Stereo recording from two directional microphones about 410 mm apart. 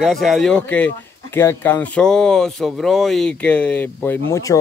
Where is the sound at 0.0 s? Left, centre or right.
Centre.